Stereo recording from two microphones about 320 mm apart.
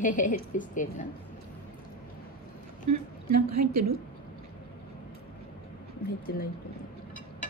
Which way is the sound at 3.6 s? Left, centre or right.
Right.